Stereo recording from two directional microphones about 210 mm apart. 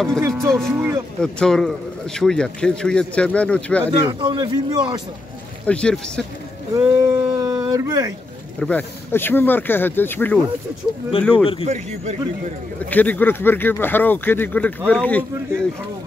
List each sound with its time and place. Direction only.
0.5 s speech: centre (ahead or behind)
0.7 s speech: 10° right (ahead or behind)
1.2 s speech: 5° left (ahead or behind)
3.8 s a man's voice: 20° right (ahead or behind)
5.7 s speech: 5° left (ahead or behind)
6.7 s speech: 15° right (ahead or behind)
8.5 s speech: 5° left (ahead or behind)
11.1 s speech: 25° left (ahead or behind)
11.6 s a man's voice: 30° right (ahead or behind)
12.9 s speech: 10° left (ahead or behind)